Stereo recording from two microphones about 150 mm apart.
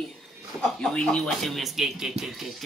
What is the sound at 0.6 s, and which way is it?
Speech, 5° left (ahead or behind).